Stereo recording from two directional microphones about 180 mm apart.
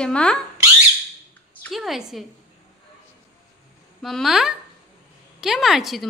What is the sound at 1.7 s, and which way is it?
Speech, centre (ahead or behind).